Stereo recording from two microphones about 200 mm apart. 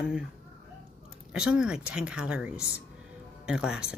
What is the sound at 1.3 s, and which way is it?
Speech, 5° right (ahead or behind).